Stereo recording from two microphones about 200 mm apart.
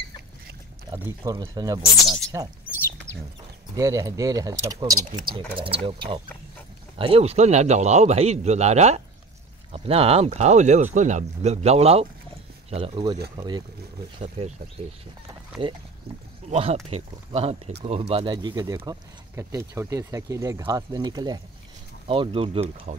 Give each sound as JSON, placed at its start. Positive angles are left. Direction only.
{"t": 0.9, "sound": "speech", "side_deg": -15}
{"t": 2.0, "sound": "speech", "side_deg": 5}
{"t": 3.7, "sound": "speech", "side_deg": -15}
{"t": 14.1, "sound": "speech", "side_deg": -35}